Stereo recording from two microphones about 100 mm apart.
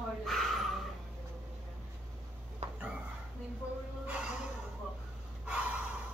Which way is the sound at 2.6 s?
90° right.